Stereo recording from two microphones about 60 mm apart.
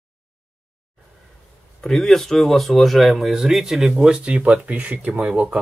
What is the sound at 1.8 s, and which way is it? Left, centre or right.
Speech, centre.